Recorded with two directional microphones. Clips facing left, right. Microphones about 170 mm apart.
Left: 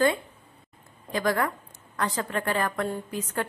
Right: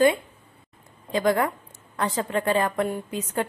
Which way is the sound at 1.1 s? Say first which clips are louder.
Right 4 dB; 20° right (ahead or behind).